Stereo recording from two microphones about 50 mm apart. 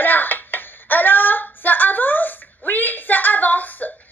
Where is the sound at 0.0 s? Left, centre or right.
Left.